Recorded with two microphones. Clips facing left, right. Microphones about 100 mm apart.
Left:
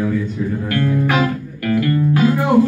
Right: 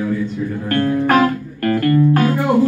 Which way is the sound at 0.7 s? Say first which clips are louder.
Right 4 dB; 45° right (ahead or behind).